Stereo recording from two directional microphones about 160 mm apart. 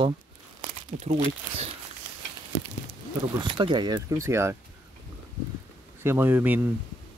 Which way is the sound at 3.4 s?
30° right (ahead or behind).